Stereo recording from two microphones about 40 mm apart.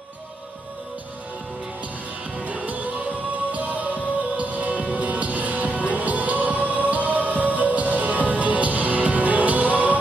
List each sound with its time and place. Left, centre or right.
2.4 s music: right